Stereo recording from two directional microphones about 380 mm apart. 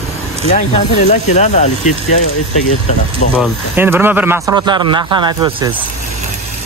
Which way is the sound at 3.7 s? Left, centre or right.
Centre.